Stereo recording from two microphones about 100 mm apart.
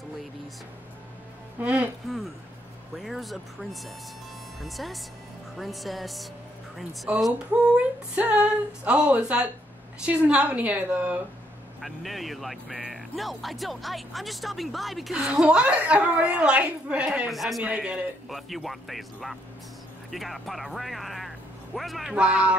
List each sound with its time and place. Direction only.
1.6 s speech: 15° right (ahead or behind)
3.0 s speech: centre (ahead or behind)
4.6 s speech: centre (ahead or behind)
7.7 s speech: 10° right (ahead or behind)
11.8 s speech: centre (ahead or behind)